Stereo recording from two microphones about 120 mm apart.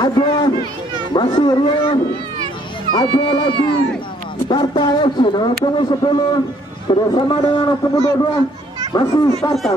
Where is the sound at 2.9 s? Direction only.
40° left (ahead or behind).